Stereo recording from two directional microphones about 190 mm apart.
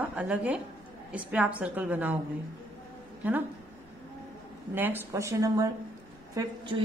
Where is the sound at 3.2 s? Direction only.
10° right (ahead or behind).